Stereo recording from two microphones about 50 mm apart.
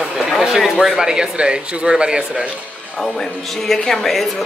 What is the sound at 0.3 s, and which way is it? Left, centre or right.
Speech, centre.